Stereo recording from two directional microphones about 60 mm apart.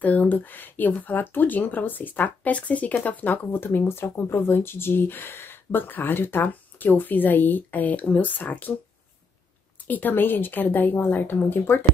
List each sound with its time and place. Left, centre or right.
0.0 s speech: left
9.8 s speech: left